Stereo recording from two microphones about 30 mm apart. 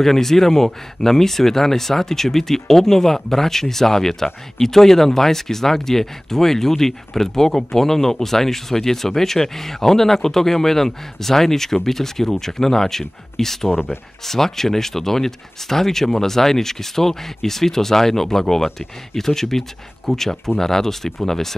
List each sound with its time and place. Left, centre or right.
0.0 s speech: centre
13.7 s speech: right
14.2 s speech: centre